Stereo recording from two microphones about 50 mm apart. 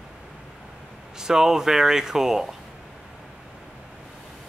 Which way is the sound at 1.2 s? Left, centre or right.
Centre.